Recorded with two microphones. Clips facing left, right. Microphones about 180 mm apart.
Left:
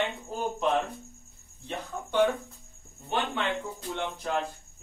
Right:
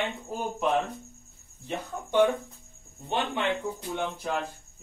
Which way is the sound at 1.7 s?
10° right (ahead or behind).